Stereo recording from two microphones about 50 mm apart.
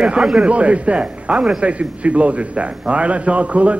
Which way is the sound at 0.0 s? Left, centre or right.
Centre.